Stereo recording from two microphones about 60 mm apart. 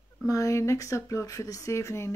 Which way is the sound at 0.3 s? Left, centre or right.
Left.